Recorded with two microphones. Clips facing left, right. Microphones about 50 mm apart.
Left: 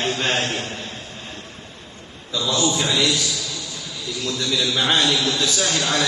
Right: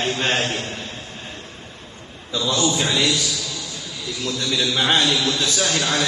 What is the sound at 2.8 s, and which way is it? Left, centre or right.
Speech, right.